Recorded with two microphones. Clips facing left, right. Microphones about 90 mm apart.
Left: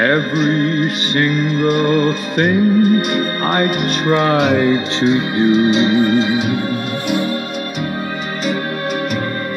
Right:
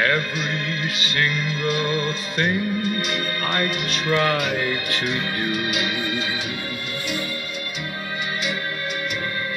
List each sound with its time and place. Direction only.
0.0 s music: 45° left (ahead or behind)
4.2 s speech: 25° left (ahead or behind)